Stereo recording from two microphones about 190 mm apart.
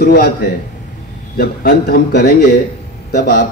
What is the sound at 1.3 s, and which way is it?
Speech, 55° left (ahead or behind).